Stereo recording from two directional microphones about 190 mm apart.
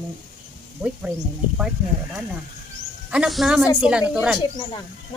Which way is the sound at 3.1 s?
5° right (ahead or behind).